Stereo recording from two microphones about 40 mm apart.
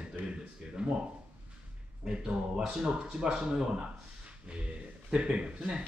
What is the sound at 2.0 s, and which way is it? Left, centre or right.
Speech, right.